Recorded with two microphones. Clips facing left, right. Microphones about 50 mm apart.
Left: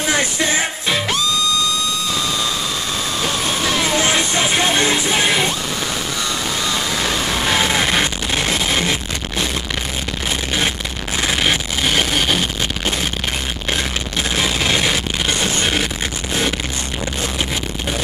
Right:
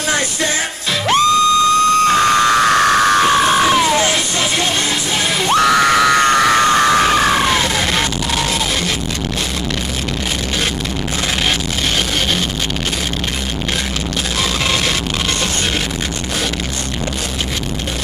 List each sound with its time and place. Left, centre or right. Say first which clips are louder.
1.1 s music: right 8 dB; right
4.0 s music: even; left
5.5 s screaming: right 12 dB; right
6.2 s music: right 11 dB; right
7.7 s music: even; centre
14.4 s music: even; centre